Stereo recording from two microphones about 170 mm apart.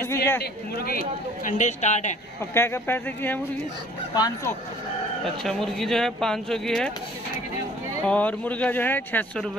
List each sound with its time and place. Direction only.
0.0 s a sound: 15° left (ahead or behind)
0.4 s speech: 65° left (ahead or behind); by 2.1 s 45° left (ahead or behind)
2.5 s speech: 15° left (ahead or behind)
4.1 s speech: 25° left (ahead or behind)
5.2 s speech: centre (ahead or behind)
8.0 s speech: 10° left (ahead or behind)